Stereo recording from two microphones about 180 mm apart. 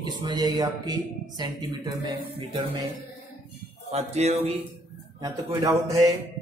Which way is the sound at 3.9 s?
35° right (ahead or behind).